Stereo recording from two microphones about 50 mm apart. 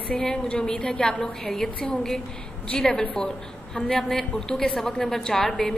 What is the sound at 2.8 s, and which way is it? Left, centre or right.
A woman's voice, centre.